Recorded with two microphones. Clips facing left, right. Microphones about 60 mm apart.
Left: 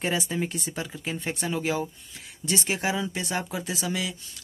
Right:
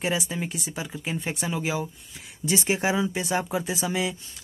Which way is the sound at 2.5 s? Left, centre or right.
Centre.